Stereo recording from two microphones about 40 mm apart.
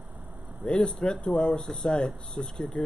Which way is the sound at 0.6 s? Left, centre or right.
Left.